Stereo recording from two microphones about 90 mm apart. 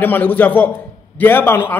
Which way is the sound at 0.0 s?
20° left (ahead or behind).